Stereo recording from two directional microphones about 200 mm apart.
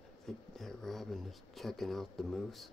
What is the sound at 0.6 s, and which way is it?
Speech, centre (ahead or behind).